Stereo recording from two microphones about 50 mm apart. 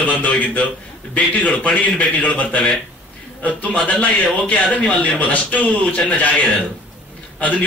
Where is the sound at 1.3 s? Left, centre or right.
Left.